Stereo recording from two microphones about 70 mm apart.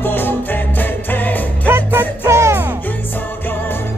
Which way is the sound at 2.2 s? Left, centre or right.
Right.